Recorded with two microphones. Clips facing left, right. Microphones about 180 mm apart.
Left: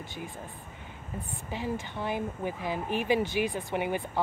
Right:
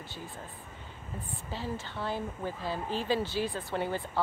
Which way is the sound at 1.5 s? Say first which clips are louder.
Left 4 dB; 15° left (ahead or behind).